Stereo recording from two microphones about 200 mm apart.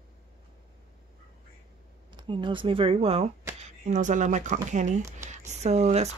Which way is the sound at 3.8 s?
40° right (ahead or behind).